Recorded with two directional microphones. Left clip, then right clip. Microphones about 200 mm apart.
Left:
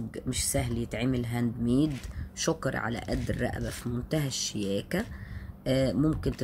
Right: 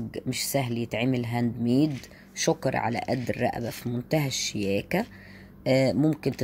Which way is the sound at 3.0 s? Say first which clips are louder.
Right 5 dB; 45° right (ahead or behind).